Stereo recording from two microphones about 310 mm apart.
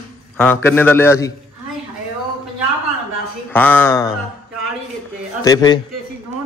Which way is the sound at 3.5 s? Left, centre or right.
Centre.